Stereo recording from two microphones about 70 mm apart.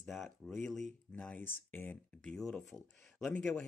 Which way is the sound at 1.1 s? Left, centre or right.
Centre.